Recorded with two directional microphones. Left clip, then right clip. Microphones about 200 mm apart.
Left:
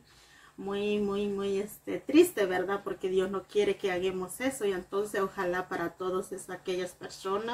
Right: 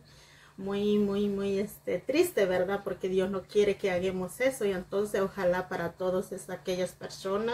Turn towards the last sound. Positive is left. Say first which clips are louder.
# right 2 dB
turn(degrees=5)  # may be behind; listen again after turning